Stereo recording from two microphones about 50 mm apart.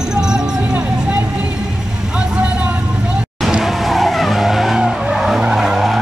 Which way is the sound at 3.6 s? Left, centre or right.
Centre.